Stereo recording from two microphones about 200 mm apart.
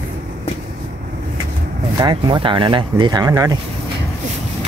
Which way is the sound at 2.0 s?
25° right (ahead or behind).